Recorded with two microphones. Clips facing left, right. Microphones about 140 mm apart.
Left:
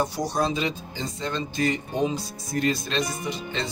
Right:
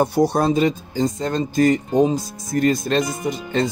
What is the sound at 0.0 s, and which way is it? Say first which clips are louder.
Speech: right 8 dB; 60° right (ahead or behind).